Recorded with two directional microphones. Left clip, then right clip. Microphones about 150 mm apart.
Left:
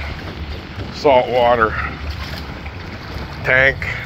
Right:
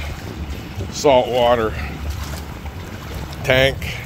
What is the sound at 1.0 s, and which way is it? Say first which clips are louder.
Speech: left 1 dB; 10° right (ahead or behind).